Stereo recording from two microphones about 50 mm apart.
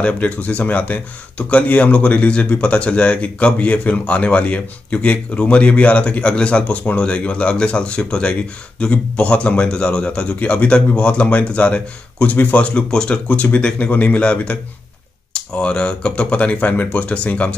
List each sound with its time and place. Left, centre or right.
0.0 s speech: left
12.4 s speech: left
12.6 s speech: centre
13.3 s speech: left
13.6 s speech: left